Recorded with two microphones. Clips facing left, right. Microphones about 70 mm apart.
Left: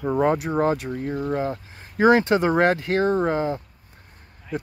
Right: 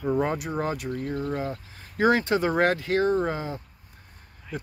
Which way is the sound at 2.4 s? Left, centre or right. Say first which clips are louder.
Left 3 dB; left.